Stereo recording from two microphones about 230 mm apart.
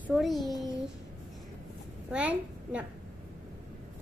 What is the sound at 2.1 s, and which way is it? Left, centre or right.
Speech, centre.